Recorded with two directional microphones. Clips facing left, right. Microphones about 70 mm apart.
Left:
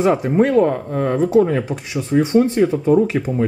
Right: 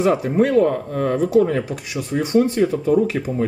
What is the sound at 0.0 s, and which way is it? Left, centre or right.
Speech, left.